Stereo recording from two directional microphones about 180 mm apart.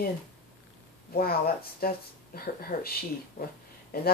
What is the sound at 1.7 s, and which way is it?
Speech, 55° left (ahead or behind).